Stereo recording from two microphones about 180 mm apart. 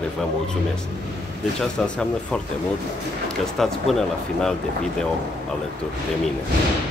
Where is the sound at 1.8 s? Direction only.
5° left (ahead or behind).